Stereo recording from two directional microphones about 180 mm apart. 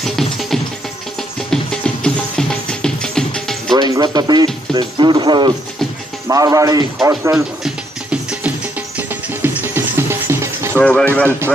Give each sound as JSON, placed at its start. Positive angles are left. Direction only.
{"t": 0.0, "sound": "music", "side_deg": 0}
{"t": 3.7, "sound": "speech", "side_deg": -20}
{"t": 7.6, "sound": "music", "side_deg": -5}
{"t": 10.8, "sound": "speech", "side_deg": 5}